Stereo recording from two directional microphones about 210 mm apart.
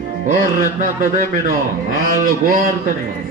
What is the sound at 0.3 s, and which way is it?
Mantra, 40° right (ahead or behind).